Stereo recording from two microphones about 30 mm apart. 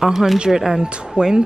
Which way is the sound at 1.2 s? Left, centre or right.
Right.